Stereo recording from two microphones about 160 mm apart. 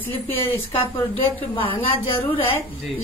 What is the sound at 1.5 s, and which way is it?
Speech, 35° left (ahead or behind).